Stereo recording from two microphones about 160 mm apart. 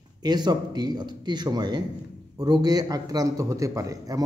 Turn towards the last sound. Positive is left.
turn(degrees=-20)  # may be behind; listen again after turning